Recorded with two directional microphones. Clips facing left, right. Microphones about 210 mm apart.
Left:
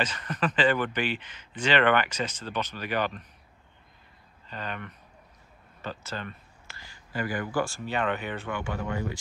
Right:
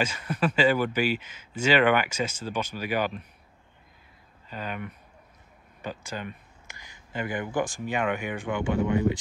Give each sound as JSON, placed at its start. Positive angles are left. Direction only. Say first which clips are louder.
{"t": 0.0, "sound": "speech", "louder": "right 2 dB", "side_deg": -10}
{"t": 4.5, "sound": "speech", "louder": "right 2 dB", "side_deg": -10}